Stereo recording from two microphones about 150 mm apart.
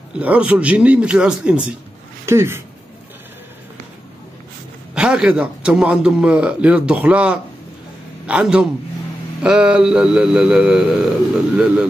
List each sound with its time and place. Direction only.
0.1 s a man's voice: 10° right (ahead or behind)
2.2 s a man's voice: 15° right (ahead or behind)
4.9 s a man's voice: 5° right (ahead or behind)
9.4 s mantra: 5° right (ahead or behind)